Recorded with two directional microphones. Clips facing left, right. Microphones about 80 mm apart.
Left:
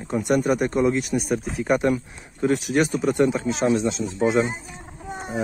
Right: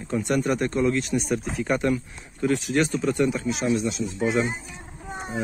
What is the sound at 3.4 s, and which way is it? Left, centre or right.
Speech, left.